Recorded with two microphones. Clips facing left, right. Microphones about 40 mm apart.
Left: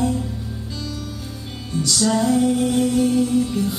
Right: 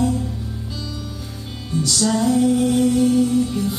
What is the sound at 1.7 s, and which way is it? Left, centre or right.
Music, centre.